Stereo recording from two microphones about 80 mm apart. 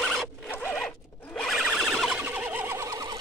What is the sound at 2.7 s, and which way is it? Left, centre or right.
Bird, right.